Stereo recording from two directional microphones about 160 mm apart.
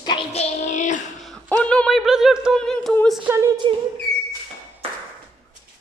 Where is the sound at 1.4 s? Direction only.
5° left (ahead or behind).